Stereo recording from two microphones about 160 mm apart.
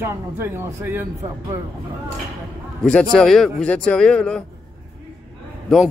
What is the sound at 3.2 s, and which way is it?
Speech, 5° left (ahead or behind).